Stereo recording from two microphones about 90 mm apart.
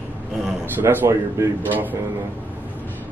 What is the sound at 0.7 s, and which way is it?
Speech, 25° right (ahead or behind).